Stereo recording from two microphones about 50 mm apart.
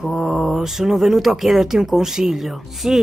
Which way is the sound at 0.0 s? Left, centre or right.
Centre.